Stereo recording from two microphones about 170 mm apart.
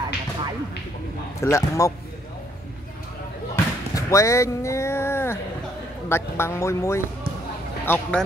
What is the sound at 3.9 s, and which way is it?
Speech, 20° left (ahead or behind).